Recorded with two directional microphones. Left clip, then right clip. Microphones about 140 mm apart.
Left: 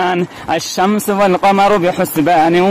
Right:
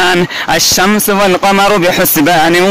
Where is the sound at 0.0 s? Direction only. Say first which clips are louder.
Right 6 dB; 5° right (ahead or behind).